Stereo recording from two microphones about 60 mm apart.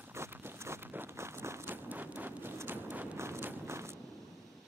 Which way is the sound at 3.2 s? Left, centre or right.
Right.